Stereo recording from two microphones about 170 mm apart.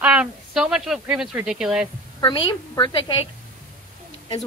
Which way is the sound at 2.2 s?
25° left (ahead or behind).